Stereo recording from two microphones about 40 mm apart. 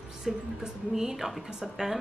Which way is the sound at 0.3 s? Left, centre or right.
Centre.